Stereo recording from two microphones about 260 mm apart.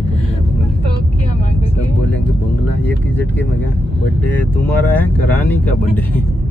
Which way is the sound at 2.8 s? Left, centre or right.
Centre.